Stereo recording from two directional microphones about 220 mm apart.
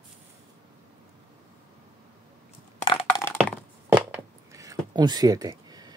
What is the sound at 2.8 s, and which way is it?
Crushing, 25° left (ahead or behind).